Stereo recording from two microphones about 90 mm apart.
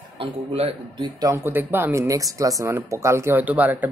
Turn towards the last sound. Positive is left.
turn(degrees=-20)  # may be behind; listen again after turning